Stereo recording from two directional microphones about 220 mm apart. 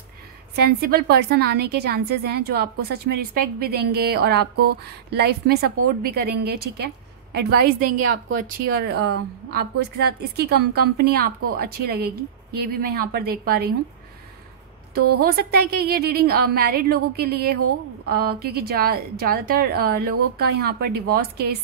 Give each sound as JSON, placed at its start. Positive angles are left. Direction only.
{"t": 0.7, "sound": "a woman's voice", "side_deg": -45}
{"t": 15.2, "sound": "a woman's voice", "side_deg": -45}